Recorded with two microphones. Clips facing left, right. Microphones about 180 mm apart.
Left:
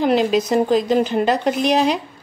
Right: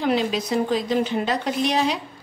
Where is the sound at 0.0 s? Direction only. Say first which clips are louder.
Left 6 dB; 55° left (ahead or behind).